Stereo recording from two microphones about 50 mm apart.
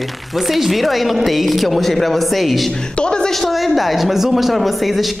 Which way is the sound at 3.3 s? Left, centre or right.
Centre.